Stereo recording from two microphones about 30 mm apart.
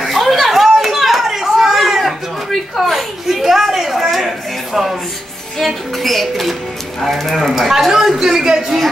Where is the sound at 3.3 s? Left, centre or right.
Centre.